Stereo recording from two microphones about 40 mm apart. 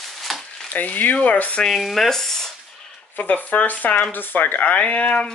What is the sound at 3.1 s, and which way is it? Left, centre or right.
Speech, left.